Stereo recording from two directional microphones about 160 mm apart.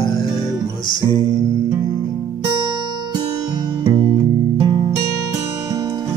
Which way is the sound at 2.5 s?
30° right (ahead or behind).